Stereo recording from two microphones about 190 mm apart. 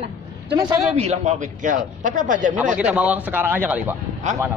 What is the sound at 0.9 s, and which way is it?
A man's voice, 35° right (ahead or behind).